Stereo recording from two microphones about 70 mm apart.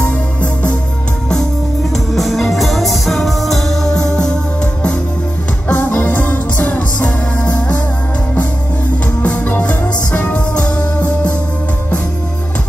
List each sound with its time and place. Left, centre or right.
0.0 s music: centre
2.1 s music: centre
5.7 s music: left
9.2 s music: centre